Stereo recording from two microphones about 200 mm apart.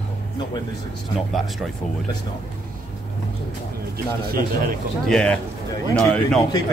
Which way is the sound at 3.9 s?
50° right (ahead or behind).